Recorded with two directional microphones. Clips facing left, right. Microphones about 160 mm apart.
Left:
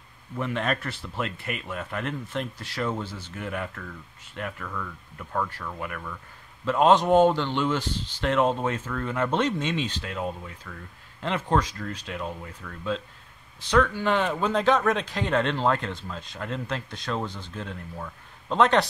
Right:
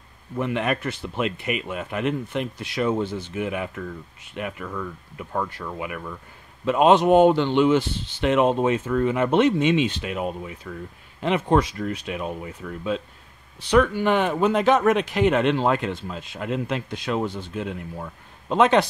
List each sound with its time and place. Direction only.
0.6 s speech: 15° right (ahead or behind)
14.0 s speech: 15° right (ahead or behind)